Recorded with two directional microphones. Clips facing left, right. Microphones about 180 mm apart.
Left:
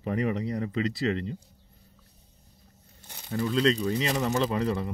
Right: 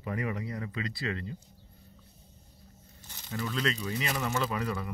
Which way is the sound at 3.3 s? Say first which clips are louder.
Left 8 dB; 35° left (ahead or behind).